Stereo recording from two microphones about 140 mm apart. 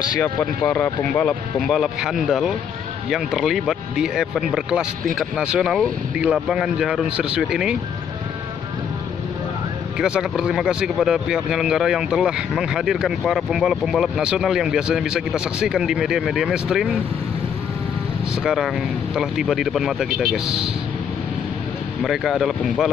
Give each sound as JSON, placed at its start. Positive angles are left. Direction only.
{"t": 0.7, "sound": "speech", "side_deg": 10}
{"t": 1.7, "sound": "speech", "side_deg": 0}
{"t": 9.9, "sound": "speech", "side_deg": -5}
{"t": 18.4, "sound": "speech", "side_deg": 0}
{"t": 20.4, "sound": "speech", "side_deg": -45}
{"t": 22.0, "sound": "speech", "side_deg": 0}